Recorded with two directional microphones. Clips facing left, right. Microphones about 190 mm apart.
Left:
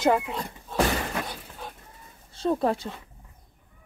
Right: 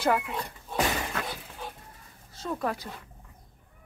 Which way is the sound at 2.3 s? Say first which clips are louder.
Left 7 dB; 30° left (ahead or behind).